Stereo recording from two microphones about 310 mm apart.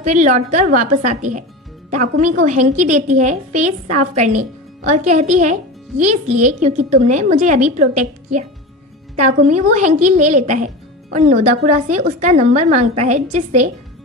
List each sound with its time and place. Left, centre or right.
0.0 s speech: right